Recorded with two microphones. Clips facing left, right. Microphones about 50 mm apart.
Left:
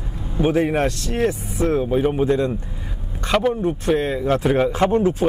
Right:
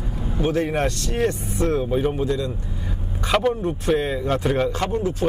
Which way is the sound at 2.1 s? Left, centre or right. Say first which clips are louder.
Left 5 dB; left.